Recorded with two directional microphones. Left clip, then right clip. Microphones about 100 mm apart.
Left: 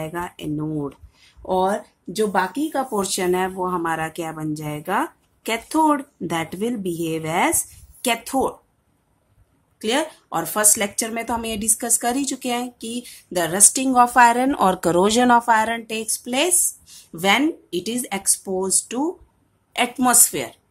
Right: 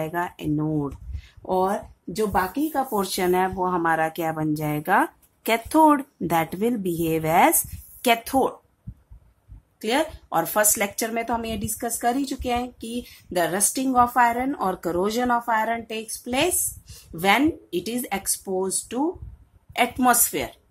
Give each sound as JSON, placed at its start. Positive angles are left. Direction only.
{"t": 0.0, "sound": "speech", "side_deg": -35}
{"t": 1.4, "sound": "speech", "side_deg": -5}
{"t": 3.0, "sound": "speech", "side_deg": -25}
{"t": 9.8, "sound": "a woman's voice", "side_deg": -5}
{"t": 10.3, "sound": "speech", "side_deg": -20}
{"t": 11.1, "sound": "speech", "side_deg": -5}
{"t": 13.9, "sound": "a woman's voice", "side_deg": 25}
{"t": 14.4, "sound": "speech", "side_deg": 50}
{"t": 15.5, "sound": "a woman's voice", "side_deg": 20}
{"t": 15.9, "sound": "speech", "side_deg": 0}